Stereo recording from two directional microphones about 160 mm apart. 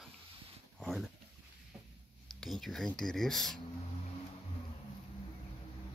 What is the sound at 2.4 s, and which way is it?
Speech, centre (ahead or behind).